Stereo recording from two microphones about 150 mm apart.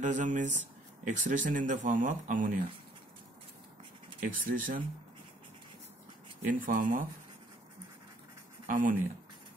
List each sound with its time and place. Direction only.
0.0 s speech: 55° right (ahead or behind)
4.2 s speech: 65° right (ahead or behind)
6.4 s speech: 60° right (ahead or behind)
8.6 s speech: 60° right (ahead or behind)